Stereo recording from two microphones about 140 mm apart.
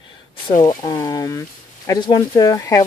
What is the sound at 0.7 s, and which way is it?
Speech, 25° left (ahead or behind).